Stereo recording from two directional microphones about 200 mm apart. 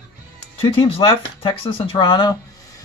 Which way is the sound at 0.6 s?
25° left (ahead or behind).